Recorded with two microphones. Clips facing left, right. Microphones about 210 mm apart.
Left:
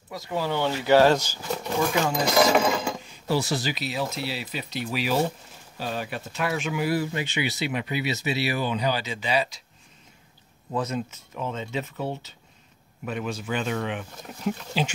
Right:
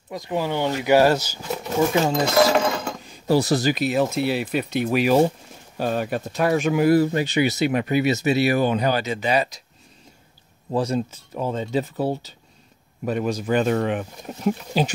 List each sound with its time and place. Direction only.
0.1 s speech: 15° right (ahead or behind)
1.8 s speech: 25° right (ahead or behind)
2.3 s speech: 5° left (ahead or behind)
3.3 s speech: 40° right (ahead or behind)
10.7 s speech: 30° right (ahead or behind)